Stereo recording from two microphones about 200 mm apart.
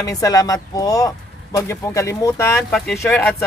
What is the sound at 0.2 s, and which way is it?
Speech, 15° left (ahead or behind).